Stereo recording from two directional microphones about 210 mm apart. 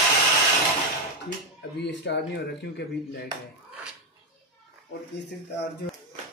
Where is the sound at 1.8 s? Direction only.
55° left (ahead or behind).